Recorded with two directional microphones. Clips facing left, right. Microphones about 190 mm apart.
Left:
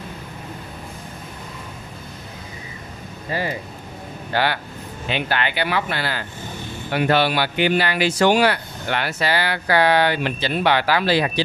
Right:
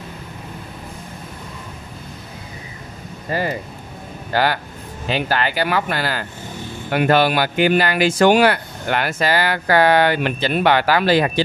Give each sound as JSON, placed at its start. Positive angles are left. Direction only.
{"t": 3.3, "sound": "speech", "side_deg": -45}